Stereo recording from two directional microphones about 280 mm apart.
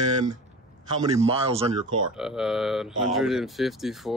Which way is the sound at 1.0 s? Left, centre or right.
Centre.